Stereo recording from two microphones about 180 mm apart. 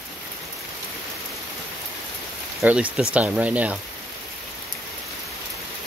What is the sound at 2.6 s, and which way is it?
Speech, 5° right (ahead or behind).